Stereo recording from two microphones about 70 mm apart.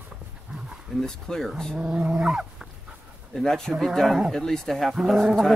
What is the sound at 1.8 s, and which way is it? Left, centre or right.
Dog, centre.